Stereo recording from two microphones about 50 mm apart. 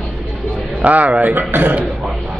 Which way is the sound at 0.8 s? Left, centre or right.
Right.